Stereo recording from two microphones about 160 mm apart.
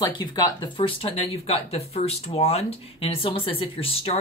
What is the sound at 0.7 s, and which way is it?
Speech, 35° left (ahead or behind).